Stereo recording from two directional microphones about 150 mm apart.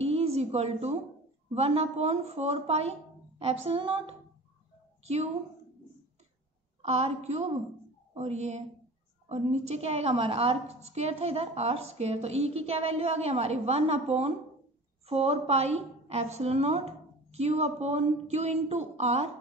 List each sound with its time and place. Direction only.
0.0 s a sound: 45° right (ahead or behind)
1.5 s a woman's voice: 45° right (ahead or behind)
6.8 s a woman's voice: 45° right (ahead or behind)